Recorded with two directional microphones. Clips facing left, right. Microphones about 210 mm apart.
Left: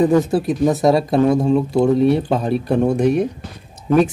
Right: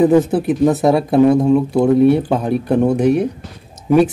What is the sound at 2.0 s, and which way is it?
Speech, 55° right (ahead or behind).